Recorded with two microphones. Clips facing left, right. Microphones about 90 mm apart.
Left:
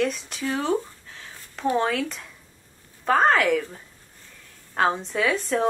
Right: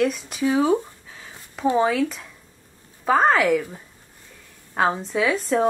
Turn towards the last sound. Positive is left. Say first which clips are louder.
# right 3 dB
turn(degrees=0)  # may be behind; listen again after turning